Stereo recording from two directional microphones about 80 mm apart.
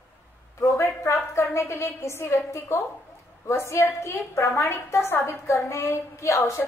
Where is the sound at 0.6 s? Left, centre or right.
Left.